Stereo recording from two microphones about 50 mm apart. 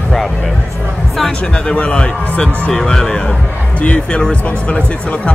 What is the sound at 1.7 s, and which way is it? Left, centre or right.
Speech, left.